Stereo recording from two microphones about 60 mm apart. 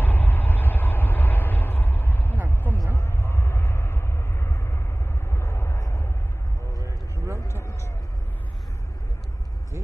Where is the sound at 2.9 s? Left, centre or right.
Left.